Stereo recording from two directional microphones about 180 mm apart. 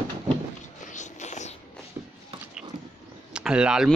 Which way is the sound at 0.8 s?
45° left (ahead or behind).